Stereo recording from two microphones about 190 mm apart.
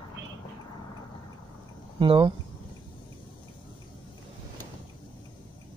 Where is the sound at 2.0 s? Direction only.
25° right (ahead or behind).